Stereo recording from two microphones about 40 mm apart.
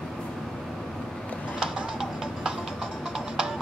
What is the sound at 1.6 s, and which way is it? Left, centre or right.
Music, centre.